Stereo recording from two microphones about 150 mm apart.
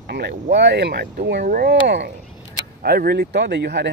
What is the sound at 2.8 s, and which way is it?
Speech, 85° right.